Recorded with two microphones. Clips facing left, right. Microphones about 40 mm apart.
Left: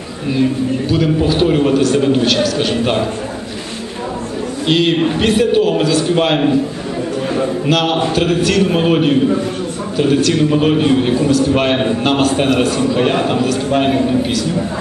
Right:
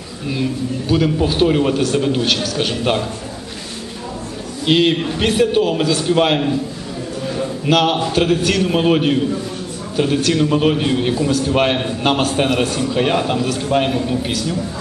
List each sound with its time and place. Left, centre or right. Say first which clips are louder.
0.8 s a man's voice: even; centre
4.6 s a man's voice: even; centre
4.9 s a man's voice: left 6 dB; centre
5.2 s a man's voice: left 1 dB; centre
7.6 s a man's voice: right 2 dB; centre